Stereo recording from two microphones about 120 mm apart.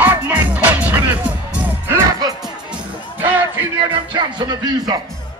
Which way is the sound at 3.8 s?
40° right (ahead or behind).